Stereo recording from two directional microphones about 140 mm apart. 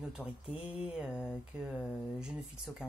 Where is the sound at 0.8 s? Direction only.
5° right (ahead or behind).